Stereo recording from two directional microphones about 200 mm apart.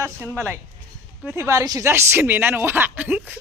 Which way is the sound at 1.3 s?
15° right (ahead or behind).